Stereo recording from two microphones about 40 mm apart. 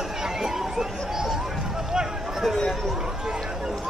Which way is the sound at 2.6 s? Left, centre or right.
Centre.